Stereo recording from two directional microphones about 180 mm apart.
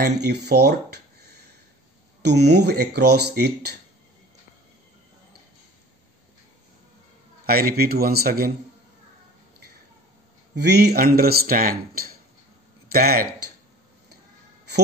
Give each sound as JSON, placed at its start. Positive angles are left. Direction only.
{"t": 0.0, "sound": "speech", "side_deg": -65}
{"t": 2.2, "sound": "speech", "side_deg": -65}
{"t": 7.4, "sound": "speech", "side_deg": -55}
{"t": 10.5, "sound": "speech", "side_deg": -65}